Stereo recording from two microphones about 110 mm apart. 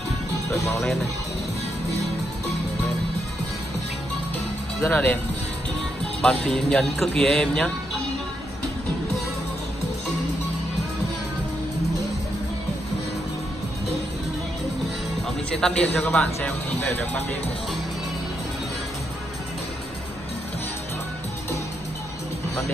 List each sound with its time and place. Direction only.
4.8 s speech: 15° left (ahead or behind)
6.2 s speech: 5° left (ahead or behind)
15.2 s music: 5° left (ahead or behind)
15.8 s speech: 10° left (ahead or behind)